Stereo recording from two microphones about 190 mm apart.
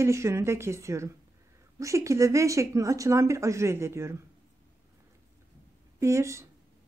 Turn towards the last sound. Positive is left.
turn(degrees=-15)  # may be behind; listen again after turning